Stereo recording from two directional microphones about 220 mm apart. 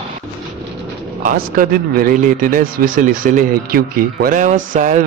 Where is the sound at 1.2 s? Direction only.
40° right (ahead or behind).